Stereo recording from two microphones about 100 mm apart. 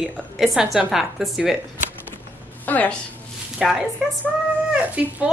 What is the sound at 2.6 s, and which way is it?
Speech, 15° left (ahead or behind).